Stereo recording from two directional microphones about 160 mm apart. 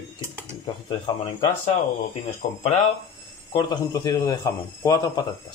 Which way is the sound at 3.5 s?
20° left (ahead or behind).